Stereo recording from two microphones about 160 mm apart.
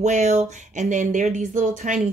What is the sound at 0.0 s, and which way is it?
Speech, 45° right (ahead or behind).